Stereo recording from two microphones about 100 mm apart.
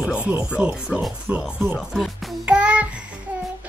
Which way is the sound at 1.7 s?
5° left (ahead or behind).